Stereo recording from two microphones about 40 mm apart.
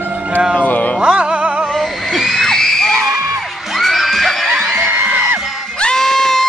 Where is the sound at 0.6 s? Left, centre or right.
Left.